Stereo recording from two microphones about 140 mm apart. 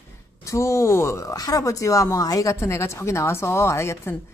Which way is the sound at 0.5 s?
20° left (ahead or behind).